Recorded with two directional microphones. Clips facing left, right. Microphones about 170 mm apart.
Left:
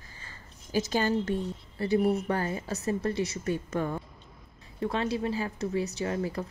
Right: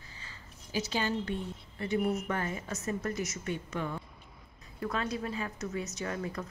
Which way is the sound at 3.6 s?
45° left (ahead or behind).